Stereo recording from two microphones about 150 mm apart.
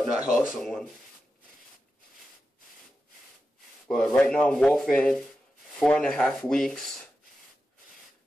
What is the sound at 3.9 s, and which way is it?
Speech, 5° left (ahead or behind).